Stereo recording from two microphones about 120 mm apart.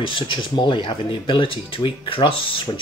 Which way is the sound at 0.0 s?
45° left (ahead or behind).